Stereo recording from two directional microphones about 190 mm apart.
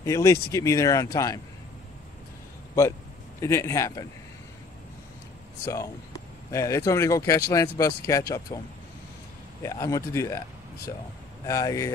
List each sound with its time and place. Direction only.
0.0 s speech: 15° left (ahead or behind)
3.3 s speech: 15° left (ahead or behind)
5.7 s speech: 15° left (ahead or behind)
9.6 s speech: 15° left (ahead or behind)
11.4 s speech: 15° left (ahead or behind)